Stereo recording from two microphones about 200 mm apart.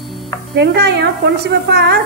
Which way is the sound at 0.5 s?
55° right (ahead or behind).